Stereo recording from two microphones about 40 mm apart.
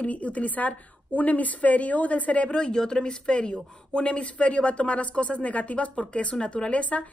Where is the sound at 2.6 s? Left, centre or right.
Centre; by 7.0 s left.